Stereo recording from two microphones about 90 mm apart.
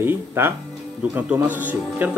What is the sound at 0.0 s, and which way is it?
A man's voice, 25° right (ahead or behind).